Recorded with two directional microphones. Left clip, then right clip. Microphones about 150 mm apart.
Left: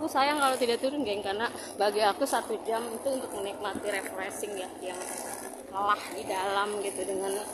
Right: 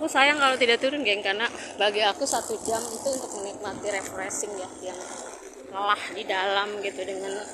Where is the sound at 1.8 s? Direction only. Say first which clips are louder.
Right 3 dB; 25° left (ahead or behind).